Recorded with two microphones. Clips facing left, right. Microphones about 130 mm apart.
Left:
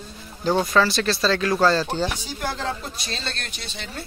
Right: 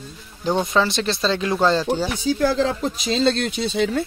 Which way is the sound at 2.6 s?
90° right.